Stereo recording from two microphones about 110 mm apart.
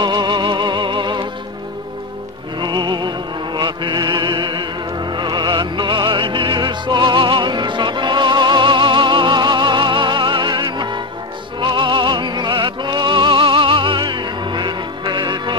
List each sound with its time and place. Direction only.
0.0 s music: 40° right (ahead or behind)
2.6 s music: 45° right (ahead or behind)